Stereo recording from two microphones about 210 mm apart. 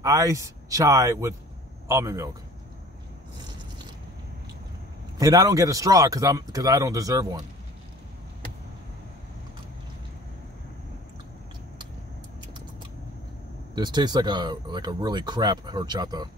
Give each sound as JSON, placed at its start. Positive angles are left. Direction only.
{"t": 0.0, "sound": "speech", "side_deg": -15}
{"t": 5.1, "sound": "speech", "side_deg": -15}
{"t": 13.7, "sound": "speech", "side_deg": -20}